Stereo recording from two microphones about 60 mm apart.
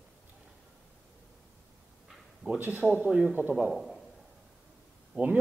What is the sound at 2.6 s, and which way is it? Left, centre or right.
Speech, right.